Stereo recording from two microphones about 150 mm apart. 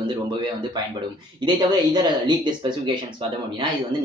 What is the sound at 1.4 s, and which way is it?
Speech, 30° right (ahead or behind).